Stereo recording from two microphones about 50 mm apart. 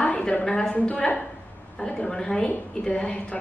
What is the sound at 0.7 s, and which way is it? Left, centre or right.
Speech, left.